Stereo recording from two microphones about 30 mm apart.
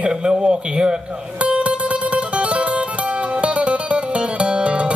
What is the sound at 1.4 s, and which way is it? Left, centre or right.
Music, right.